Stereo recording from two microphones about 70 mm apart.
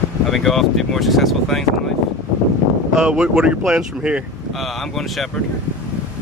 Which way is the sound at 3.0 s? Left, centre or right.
Centre.